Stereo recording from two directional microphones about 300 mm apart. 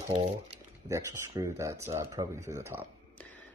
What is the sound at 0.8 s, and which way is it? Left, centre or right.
Speech, centre.